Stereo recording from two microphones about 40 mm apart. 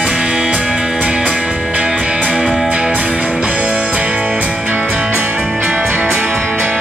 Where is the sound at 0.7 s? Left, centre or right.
Centre.